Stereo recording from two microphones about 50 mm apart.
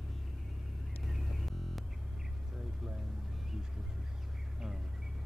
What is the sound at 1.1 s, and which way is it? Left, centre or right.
Music, centre.